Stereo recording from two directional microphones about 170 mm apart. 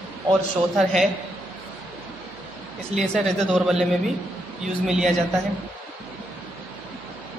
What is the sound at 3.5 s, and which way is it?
Speech, 5° right (ahead or behind).